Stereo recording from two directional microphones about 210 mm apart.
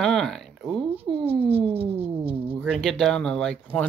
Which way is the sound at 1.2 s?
25° right (ahead or behind).